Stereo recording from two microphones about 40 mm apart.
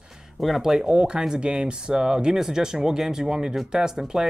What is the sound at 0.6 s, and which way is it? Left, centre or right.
Speech, centre.